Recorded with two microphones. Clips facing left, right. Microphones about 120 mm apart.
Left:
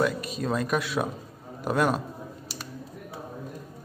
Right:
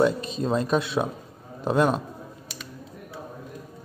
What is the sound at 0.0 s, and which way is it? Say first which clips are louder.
A man's voice: right 4 dB; 25° right (ahead or behind).